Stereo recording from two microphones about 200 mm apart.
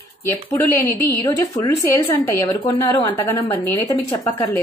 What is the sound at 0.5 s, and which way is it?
A woman's voice, 15° left (ahead or behind).